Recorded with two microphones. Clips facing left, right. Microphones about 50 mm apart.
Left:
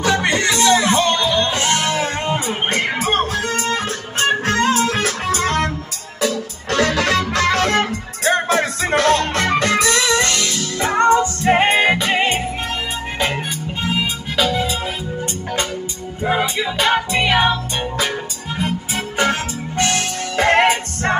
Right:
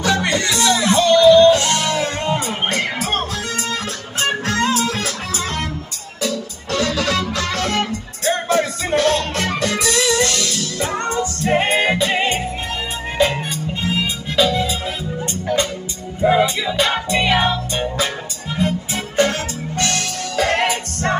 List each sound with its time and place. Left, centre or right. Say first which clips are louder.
0.0 s music: left 1 dB; left
6.2 s music: left 3 dB; left
8.2 s music: left 1 dB; left
13.8 s music: left 1 dB; left
16.3 s music: right 3 dB; left
19.8 s music: left 2 dB; left